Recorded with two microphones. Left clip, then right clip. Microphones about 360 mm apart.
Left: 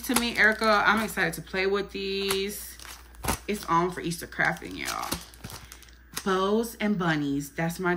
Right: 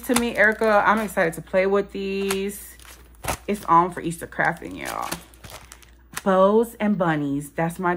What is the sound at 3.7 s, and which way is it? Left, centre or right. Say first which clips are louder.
Speech: right 8 dB; centre.